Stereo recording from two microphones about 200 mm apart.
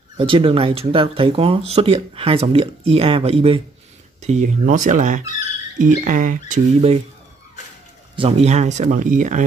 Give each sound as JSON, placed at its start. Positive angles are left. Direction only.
{"t": 0.2, "sound": "speech", "side_deg": -25}
{"t": 8.2, "sound": "speech", "side_deg": -30}